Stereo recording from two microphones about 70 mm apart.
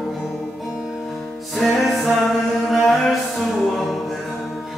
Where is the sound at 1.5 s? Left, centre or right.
Centre.